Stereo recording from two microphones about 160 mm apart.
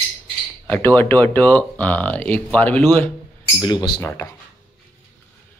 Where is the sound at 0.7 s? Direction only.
10° left (ahead or behind).